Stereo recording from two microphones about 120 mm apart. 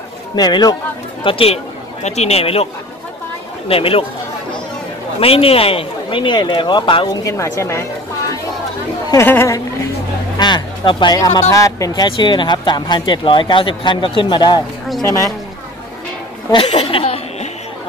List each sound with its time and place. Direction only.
0.4 s speech: 35° left (ahead or behind)
1.2 s speech: 50° left (ahead or behind)
5.2 s speech: 50° left (ahead or behind)
7.2 s a woman's voice: 25° left (ahead or behind)
9.1 s a woman's voice: 20° left (ahead or behind)
10.3 s speech: 40° left (ahead or behind)
15.0 s a woman's voice: 25° left (ahead or behind)
16.7 s a sound: 55° left (ahead or behind)